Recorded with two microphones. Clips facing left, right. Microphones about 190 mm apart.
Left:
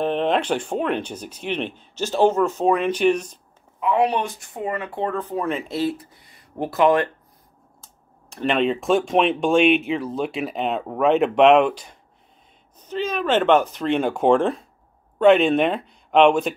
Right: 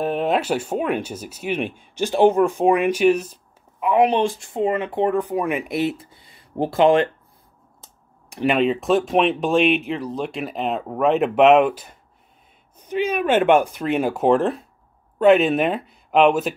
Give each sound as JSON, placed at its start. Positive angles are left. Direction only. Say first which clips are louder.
{"t": 0.0, "sound": "speech", "louder": "even", "side_deg": -5}
{"t": 3.8, "sound": "speech", "louder": "right 3 dB", "side_deg": -20}
{"t": 8.3, "sound": "speech", "louder": "right 3 dB", "side_deg": -15}
{"t": 8.5, "sound": "speech", "louder": "even", "side_deg": 0}